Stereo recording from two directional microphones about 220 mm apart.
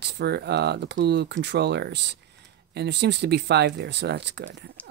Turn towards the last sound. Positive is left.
turn(degrees=-50)  # may be behind; listen again after turning